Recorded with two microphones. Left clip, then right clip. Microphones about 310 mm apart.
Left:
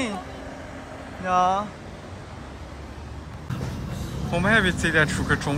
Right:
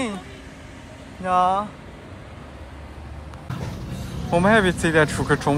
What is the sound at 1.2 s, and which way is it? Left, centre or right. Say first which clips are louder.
Speech: right 2 dB; centre.